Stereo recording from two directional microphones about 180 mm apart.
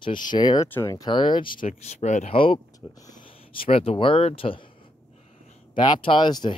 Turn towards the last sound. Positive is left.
turn(degrees=25)  # may be behind; listen again after turning